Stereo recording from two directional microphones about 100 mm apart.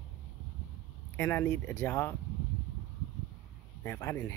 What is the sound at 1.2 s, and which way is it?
Speech, 20° left (ahead or behind).